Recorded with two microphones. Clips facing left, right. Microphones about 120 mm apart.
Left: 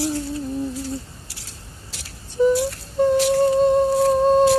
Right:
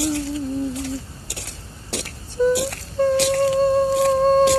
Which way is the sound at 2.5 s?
70° right (ahead or behind).